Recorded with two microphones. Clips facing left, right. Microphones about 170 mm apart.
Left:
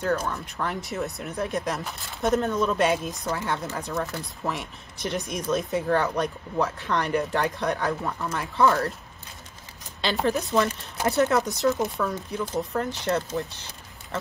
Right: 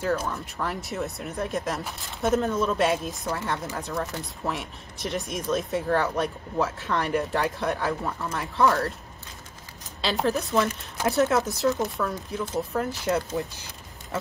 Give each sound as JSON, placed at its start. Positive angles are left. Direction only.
{"t": 0.0, "sound": "speech", "side_deg": -5}
{"t": 10.0, "sound": "speech", "side_deg": 0}
{"t": 14.1, "sound": "pig", "side_deg": -10}